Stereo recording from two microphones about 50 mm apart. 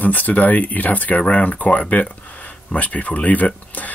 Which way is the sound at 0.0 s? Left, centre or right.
Left.